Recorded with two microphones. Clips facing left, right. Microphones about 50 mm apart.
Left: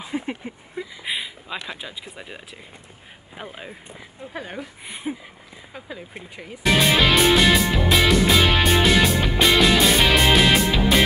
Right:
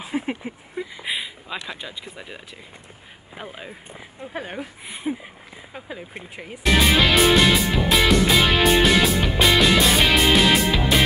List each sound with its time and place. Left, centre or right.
0.0 s a sound: centre
1.7 s speech: centre
4.2 s speech: centre
4.8 s speech: centre
5.7 s speech: centre
6.6 s music: centre